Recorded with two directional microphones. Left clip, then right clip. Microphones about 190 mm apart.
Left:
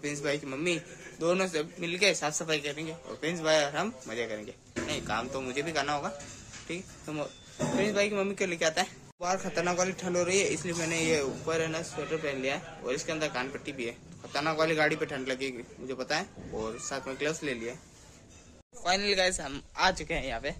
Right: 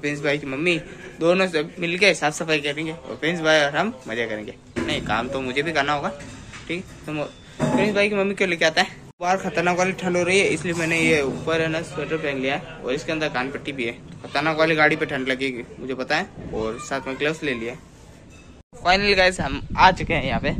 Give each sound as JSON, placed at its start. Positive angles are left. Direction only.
{"t": 0.0, "sound": "a man's voice", "side_deg": 15}
{"t": 18.8, "sound": "a man's voice", "side_deg": 5}